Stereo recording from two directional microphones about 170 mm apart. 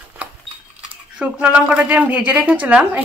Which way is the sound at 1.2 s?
5° right (ahead or behind).